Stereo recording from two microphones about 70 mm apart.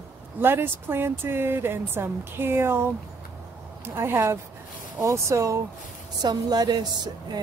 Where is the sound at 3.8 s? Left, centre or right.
Right.